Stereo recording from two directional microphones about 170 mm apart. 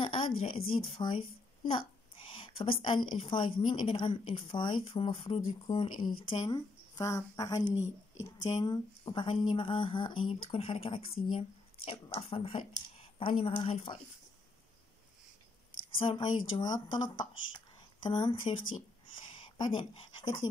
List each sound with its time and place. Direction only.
0.0 s a woman's voice: 30° left (ahead or behind)
16.0 s a woman's voice: 25° left (ahead or behind)
19.6 s a woman's voice: 25° left (ahead or behind)